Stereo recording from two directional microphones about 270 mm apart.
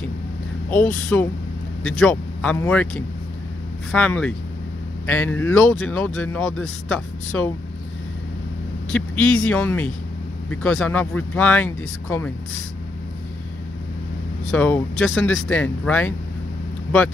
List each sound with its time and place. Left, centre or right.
1.1 s speech: centre
8.9 s speech: centre
14.5 s speech: centre